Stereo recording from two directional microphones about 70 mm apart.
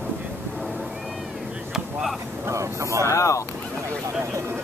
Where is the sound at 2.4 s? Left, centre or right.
Right.